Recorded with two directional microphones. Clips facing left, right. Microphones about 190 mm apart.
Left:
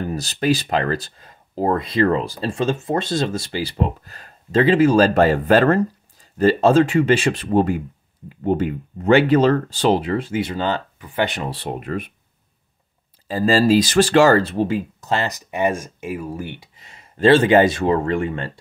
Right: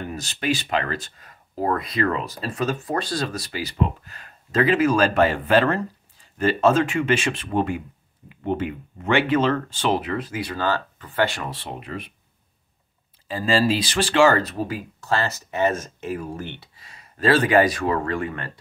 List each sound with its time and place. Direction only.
0.0 s speech: 35° left (ahead or behind); by 11.5 s 20° left (ahead or behind)
11.5 s speech: 45° left (ahead or behind)
13.3 s speech: 40° left (ahead or behind); by 16.6 s 10° left (ahead or behind)
16.7 s speech: 25° left (ahead or behind)